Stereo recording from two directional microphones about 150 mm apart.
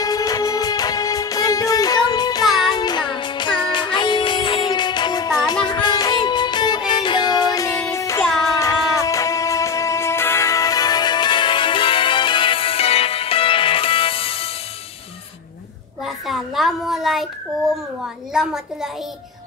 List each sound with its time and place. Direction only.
0.0 s music: 25° left (ahead or behind)
16.3 s a sound: centre (ahead or behind)
18.3 s a woman's voice: 5° right (ahead or behind)